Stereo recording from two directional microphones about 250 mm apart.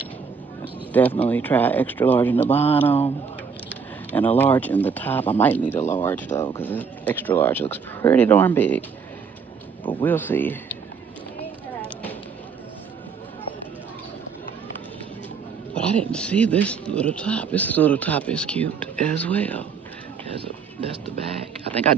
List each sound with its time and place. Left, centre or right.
1.2 s speech: centre
5.8 s speech: centre
6.0 s speech: centre
10.0 s speech: centre
15.7 s speech: centre